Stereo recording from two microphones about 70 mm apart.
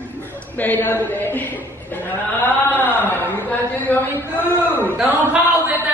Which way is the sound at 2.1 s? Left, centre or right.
Left.